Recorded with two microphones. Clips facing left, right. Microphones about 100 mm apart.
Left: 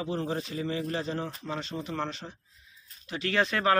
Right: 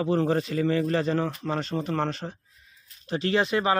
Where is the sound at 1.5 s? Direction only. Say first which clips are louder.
Right 6 dB; 50° right (ahead or behind).